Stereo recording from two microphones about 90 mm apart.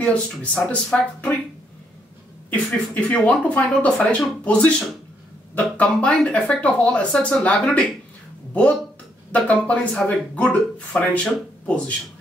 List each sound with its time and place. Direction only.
0.0 s speech: 15° left (ahead or behind)
2.5 s speech: 15° left (ahead or behind)
9.3 s speech: 15° left (ahead or behind)